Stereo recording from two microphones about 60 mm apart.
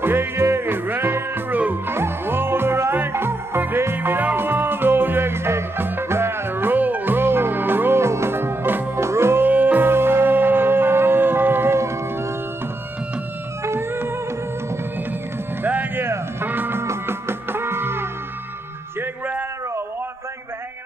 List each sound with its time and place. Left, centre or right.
0.0 s music: right
9.5 s music: right
13.7 s music: right
15.6 s music: right
16.8 s music: right
18.9 s music: right